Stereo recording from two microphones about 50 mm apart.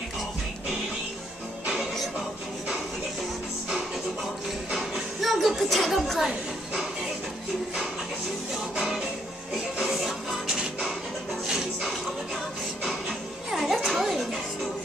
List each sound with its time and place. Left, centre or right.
4.7 s a sound: centre
8.7 s music: centre
13.5 s music: centre